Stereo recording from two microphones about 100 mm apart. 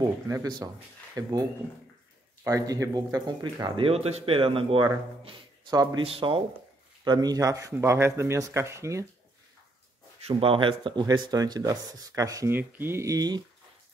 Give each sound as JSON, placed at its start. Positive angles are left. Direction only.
{"t": 0.0, "sound": "speech", "side_deg": -40}
{"t": 2.4, "sound": "speech", "side_deg": -35}
{"t": 3.8, "sound": "a man's voice", "side_deg": -90}
{"t": 5.7, "sound": "speech", "side_deg": -40}
{"t": 6.0, "sound": "a man's voice", "side_deg": -65}
{"t": 7.1, "sound": "speech", "side_deg": -40}
{"t": 10.2, "sound": "speech", "side_deg": -65}
{"t": 11.1, "sound": "speech", "side_deg": -45}
{"t": 12.4, "sound": "speech", "side_deg": -20}